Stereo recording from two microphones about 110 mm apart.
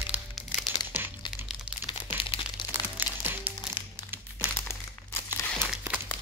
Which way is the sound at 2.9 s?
15° right (ahead or behind).